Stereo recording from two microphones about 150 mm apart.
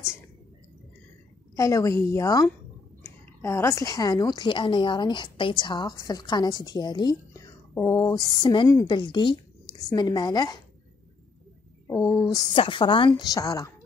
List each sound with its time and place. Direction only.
1.6 s a woman's voice: 20° left (ahead or behind)
12.2 s a woman's voice: 20° left (ahead or behind)
12.5 s a woman's voice: 35° left (ahead or behind)